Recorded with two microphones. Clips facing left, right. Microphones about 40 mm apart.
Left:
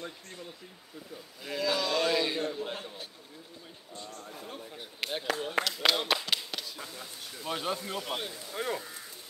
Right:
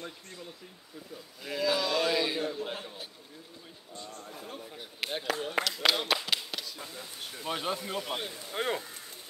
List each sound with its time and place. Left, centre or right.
1.4 s a man's voice: centre
4.2 s a sound: centre
7.4 s speech: centre
8.5 s speech: right